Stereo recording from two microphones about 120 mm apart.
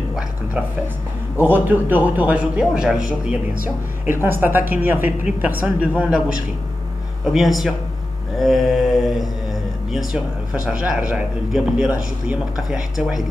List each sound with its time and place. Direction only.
1.4 s a man's voice: 15° right (ahead or behind)
3.6 s a man's voice: 20° right (ahead or behind); by 7.7 s centre (ahead or behind)
8.4 s mantra: centre (ahead or behind)
10.5 s speech: 5° right (ahead or behind)